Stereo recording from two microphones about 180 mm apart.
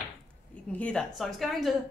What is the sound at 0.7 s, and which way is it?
A woman's voice, 5° left (ahead or behind).